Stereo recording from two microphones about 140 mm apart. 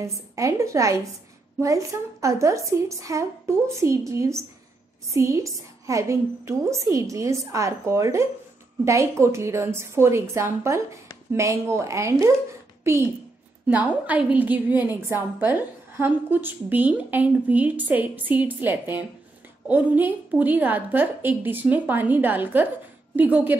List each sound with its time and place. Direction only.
0.0 s a woman's voice: 20° right (ahead or behind)